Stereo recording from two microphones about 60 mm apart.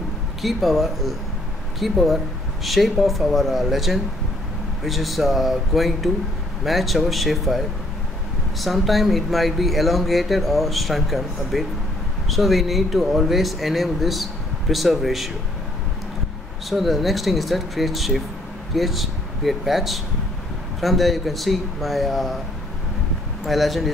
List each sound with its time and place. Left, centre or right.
0.4 s speech: centre
16.6 s speech: centre
23.4 s speech: centre